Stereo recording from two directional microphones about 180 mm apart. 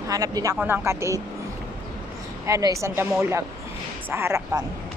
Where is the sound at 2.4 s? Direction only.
15° right (ahead or behind).